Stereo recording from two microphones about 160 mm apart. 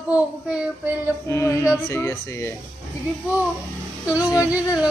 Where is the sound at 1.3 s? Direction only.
15° left (ahead or behind).